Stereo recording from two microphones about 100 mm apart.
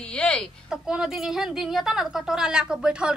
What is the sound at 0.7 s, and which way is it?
A woman's voice, 5° right (ahead or behind).